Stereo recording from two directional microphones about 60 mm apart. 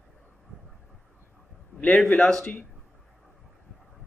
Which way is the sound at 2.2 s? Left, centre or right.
Centre.